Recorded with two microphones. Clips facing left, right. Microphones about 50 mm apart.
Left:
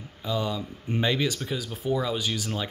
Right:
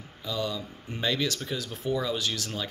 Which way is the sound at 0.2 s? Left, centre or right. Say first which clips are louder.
Left 3 dB; left.